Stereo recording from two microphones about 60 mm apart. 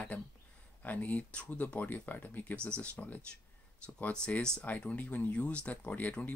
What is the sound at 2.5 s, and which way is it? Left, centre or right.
Speech, centre.